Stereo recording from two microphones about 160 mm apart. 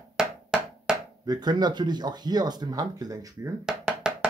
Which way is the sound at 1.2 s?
25° right (ahead or behind).